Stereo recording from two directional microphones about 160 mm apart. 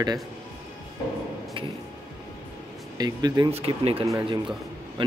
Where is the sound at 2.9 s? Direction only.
25° right (ahead or behind).